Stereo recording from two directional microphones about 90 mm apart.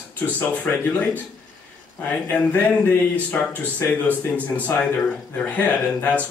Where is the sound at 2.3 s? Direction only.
15° left (ahead or behind).